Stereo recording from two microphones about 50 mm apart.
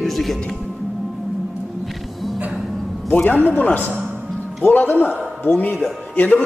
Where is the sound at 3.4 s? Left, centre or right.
Left.